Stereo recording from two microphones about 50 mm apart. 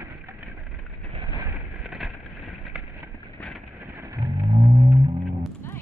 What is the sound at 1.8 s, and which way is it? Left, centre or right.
Vehicle, centre.